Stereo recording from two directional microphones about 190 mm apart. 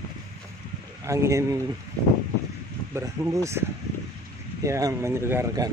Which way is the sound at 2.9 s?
15° right (ahead or behind).